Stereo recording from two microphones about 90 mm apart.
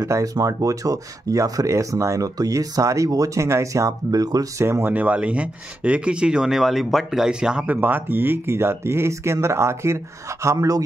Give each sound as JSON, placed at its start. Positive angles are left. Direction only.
{"t": 0.0, "sound": "speech", "side_deg": -40}
{"t": 4.6, "sound": "speech", "side_deg": -30}
{"t": 4.9, "sound": "speech", "side_deg": -15}